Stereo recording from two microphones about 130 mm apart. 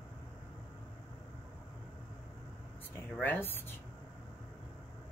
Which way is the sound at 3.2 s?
15° left (ahead or behind).